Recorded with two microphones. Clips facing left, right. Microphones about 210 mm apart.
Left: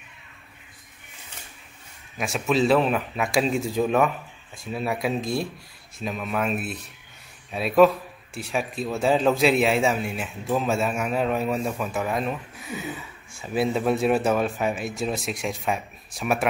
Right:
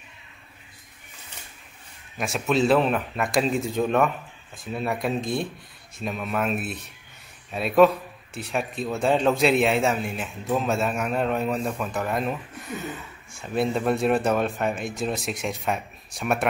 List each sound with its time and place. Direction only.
2.1 s a man's voice: centre (ahead or behind)